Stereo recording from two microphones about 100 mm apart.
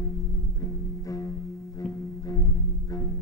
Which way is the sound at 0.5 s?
35° left (ahead or behind).